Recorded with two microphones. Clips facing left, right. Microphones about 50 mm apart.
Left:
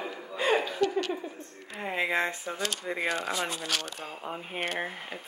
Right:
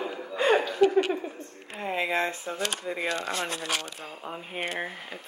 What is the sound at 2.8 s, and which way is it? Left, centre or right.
A woman's voice, centre.